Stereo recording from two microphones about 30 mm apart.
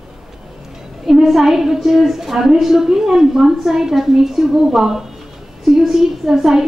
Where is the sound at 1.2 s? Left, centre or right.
Centre.